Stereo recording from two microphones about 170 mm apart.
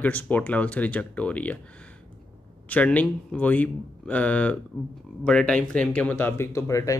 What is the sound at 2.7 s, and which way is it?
Speech, 10° left (ahead or behind).